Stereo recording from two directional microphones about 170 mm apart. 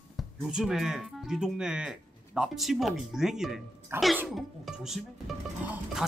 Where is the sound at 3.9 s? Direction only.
15° right (ahead or behind).